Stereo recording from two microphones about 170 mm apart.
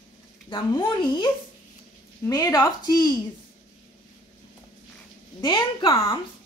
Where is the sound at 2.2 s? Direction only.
20° left (ahead or behind).